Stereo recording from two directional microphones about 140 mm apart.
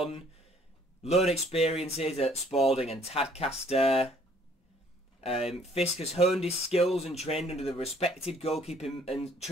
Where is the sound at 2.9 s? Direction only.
45° left (ahead or behind).